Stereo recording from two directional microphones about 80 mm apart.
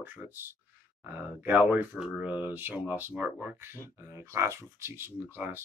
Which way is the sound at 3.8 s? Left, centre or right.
Right.